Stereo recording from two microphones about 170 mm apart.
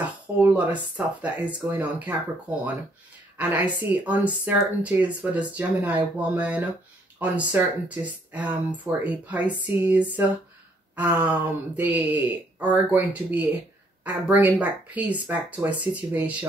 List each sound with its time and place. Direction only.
0.4 s speech: 10° right (ahead or behind)
3.3 s speech: 10° right (ahead or behind)